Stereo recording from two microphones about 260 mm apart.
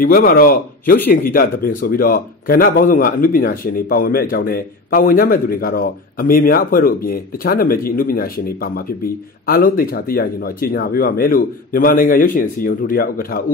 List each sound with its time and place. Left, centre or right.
0.0 s a man's voice: left